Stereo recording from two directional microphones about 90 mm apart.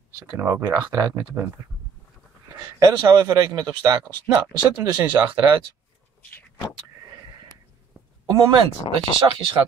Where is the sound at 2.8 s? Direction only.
35° right (ahead or behind).